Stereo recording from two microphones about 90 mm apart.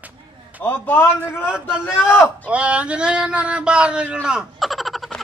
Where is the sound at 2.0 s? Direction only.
25° left (ahead or behind).